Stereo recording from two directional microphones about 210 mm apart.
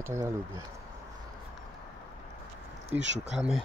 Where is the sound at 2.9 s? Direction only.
10° right (ahead or behind).